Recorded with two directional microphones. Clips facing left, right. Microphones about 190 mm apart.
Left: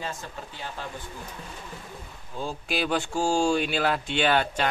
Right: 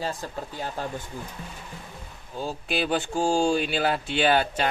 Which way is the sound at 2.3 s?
Centre (ahead or behind).